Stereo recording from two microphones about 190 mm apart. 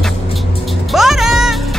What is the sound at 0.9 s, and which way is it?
Music, centre (ahead or behind).